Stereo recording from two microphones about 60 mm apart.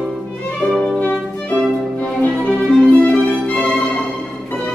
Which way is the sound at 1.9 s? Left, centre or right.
Left.